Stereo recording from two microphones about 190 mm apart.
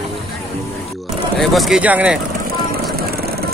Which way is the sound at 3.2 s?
55° right (ahead or behind).